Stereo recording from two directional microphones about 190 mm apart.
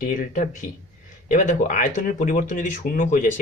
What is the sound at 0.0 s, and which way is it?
Speech, 45° left (ahead or behind).